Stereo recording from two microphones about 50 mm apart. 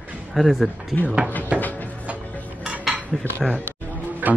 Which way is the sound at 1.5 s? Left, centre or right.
Right.